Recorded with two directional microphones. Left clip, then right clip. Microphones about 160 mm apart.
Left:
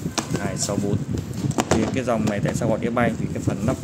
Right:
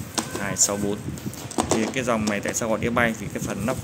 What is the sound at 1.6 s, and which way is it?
Speech, 5° left (ahead or behind).